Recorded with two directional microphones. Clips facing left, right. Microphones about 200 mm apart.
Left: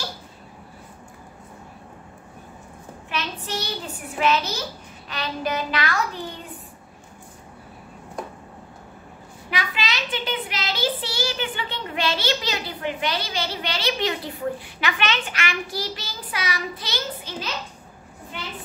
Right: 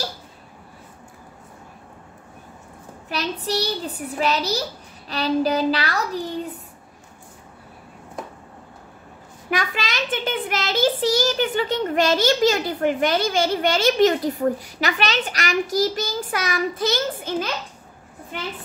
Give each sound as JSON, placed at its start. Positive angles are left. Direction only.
{"t": 3.1, "sound": "a child's voice", "side_deg": -35}
{"t": 9.5, "sound": "a child's voice", "side_deg": -50}